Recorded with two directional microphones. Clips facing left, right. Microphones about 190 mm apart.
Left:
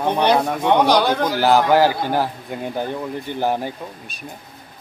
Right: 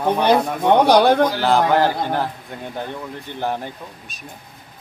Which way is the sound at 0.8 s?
55° right (ahead or behind).